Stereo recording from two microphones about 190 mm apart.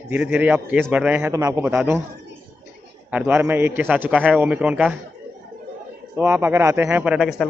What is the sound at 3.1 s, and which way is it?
A man's voice, 10° right (ahead or behind).